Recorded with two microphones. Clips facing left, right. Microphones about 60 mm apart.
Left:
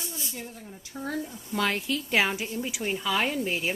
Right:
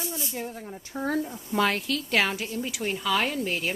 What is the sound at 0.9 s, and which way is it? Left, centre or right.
Speech, right.